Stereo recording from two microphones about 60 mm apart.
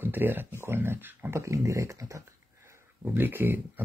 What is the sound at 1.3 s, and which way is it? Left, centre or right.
Speech, right.